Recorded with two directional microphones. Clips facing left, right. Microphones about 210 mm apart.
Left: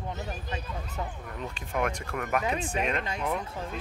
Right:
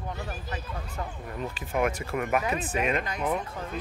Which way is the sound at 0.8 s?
Centre (ahead or behind).